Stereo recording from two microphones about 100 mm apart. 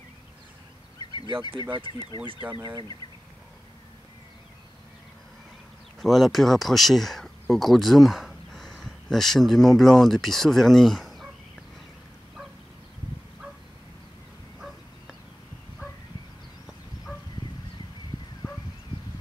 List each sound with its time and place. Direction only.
1.6 s speech: 50° right (ahead or behind)
1.9 s speech: 45° left (ahead or behind)
5.9 s speech: centre (ahead or behind)